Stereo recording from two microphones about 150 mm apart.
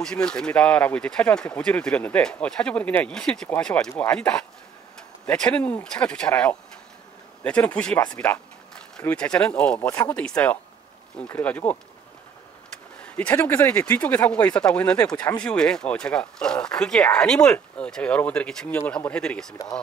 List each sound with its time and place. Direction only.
0.0 s speech: 5° left (ahead or behind)
13.0 s speech: 5° left (ahead or behind)
15.1 s speech: 25° left (ahead or behind)
15.4 s speech: 5° left (ahead or behind)